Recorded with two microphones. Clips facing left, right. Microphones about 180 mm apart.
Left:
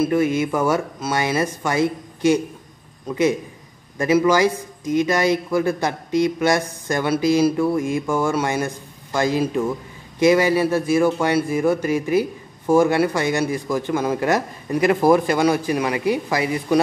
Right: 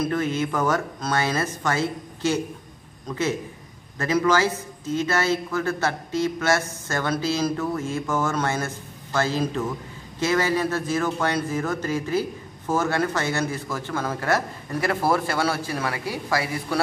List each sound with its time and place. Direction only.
0.0 s speech: 10° left (ahead or behind)